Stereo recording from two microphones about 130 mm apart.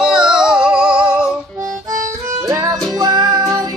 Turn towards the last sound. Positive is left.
turn(degrees=-30)  # may be behind; listen again after turning